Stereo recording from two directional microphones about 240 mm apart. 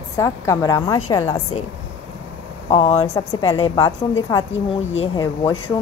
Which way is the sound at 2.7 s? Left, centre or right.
Left.